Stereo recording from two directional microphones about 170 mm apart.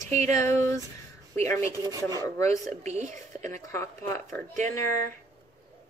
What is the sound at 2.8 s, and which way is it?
Speech, 45° right (ahead or behind).